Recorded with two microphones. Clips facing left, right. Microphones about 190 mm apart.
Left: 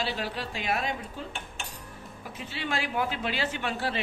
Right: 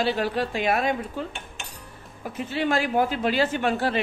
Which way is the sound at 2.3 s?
50° right (ahead or behind).